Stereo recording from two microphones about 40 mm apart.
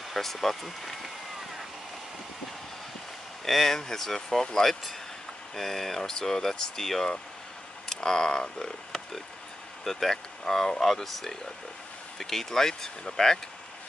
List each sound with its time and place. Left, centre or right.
0.1 s speech: centre
3.4 s speech: centre
9.8 s speech: centre